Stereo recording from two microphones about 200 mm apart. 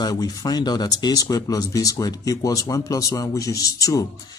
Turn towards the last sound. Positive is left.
turn(degrees=15)  # may be behind; listen again after turning